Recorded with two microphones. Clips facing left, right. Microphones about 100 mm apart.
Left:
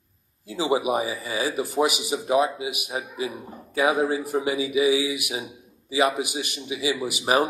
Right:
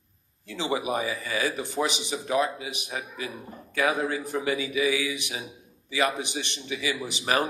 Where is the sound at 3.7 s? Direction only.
30° left (ahead or behind).